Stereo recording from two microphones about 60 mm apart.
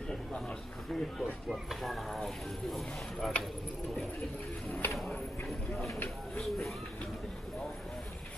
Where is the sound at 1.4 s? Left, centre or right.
Centre.